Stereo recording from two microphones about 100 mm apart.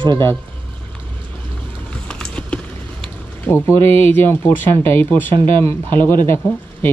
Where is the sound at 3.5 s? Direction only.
25° left (ahead or behind).